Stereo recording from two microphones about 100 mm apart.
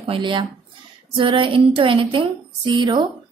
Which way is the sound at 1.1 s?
60° right (ahead or behind).